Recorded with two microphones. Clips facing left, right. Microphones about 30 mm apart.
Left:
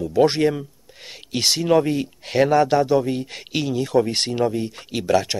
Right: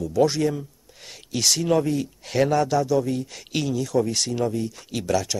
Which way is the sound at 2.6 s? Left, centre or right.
Left.